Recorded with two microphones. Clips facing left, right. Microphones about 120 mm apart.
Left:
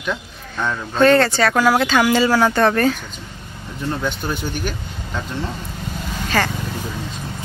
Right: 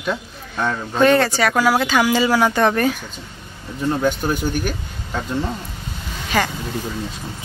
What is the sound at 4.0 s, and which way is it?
Speech, 45° right (ahead or behind).